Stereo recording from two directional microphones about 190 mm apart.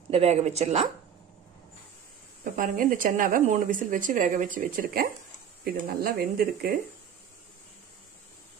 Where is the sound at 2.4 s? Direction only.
45° right (ahead or behind).